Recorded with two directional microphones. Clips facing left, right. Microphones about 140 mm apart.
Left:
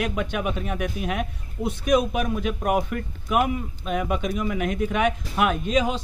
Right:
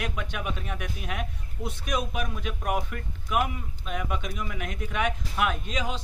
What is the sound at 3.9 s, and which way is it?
Speech, 70° left (ahead or behind).